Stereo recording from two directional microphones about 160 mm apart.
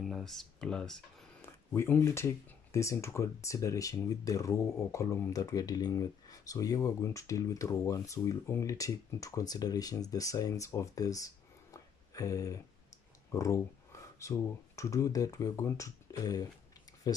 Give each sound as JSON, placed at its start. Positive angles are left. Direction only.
{"t": 0.0, "sound": "speech", "side_deg": 0}